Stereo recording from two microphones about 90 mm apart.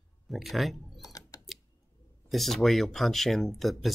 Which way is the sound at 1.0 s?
45° left (ahead or behind).